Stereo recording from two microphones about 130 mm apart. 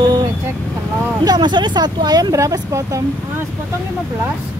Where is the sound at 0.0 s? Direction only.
35° right (ahead or behind).